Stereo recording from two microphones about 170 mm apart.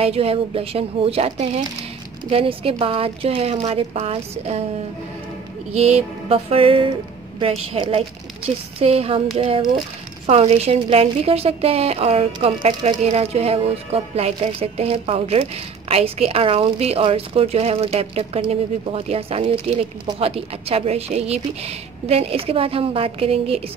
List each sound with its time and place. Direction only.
0.0 s a woman's voice: 35° right (ahead or behind)
5.8 s a woman's voice: 35° right (ahead or behind)